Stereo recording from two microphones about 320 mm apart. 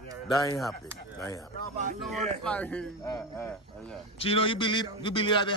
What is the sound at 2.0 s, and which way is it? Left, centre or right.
Speech, centre.